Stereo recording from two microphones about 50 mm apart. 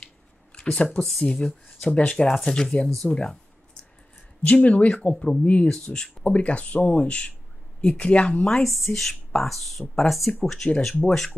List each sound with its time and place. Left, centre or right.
0.0 s a sound: centre
1.2 s speech: centre
4.4 s speech: left
8.5 s speech: centre